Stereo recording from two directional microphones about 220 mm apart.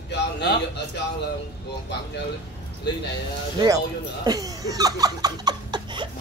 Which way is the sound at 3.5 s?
15° right (ahead or behind).